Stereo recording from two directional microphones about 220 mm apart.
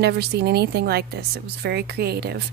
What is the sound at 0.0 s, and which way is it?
A woman's voice, 45° right (ahead or behind).